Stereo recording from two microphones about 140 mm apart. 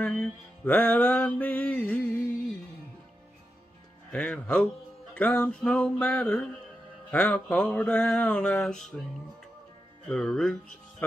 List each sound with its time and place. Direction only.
0.0 s music: 5° left (ahead or behind)
4.1 s speech: 5° left (ahead or behind)
5.1 s music: 10° left (ahead or behind)
10.0 s speech: 5° left (ahead or behind)